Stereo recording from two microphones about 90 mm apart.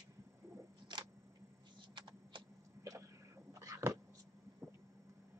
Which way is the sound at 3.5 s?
35° right (ahead or behind).